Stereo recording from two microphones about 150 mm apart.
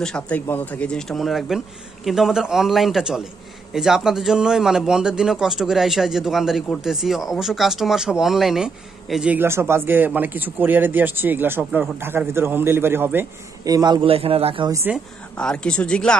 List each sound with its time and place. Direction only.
0.0 s a man's voice: 10° left (ahead or behind); by 14.7 s 40° right (ahead or behind)
15.3 s speech: 5° left (ahead or behind)